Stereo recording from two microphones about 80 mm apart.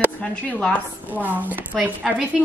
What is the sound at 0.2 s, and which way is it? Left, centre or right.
Speech, centre.